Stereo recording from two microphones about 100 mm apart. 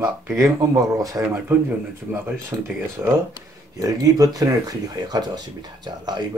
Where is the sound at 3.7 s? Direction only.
35° right (ahead or behind).